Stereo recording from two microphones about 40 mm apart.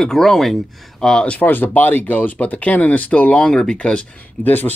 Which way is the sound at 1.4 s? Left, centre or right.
Left.